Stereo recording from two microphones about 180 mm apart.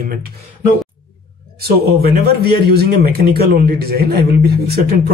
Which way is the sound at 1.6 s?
60° right (ahead or behind).